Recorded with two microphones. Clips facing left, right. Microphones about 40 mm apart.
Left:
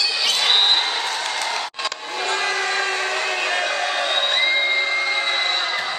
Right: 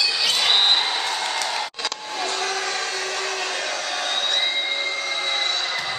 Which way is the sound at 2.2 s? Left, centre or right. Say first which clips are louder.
Left 4 dB; left.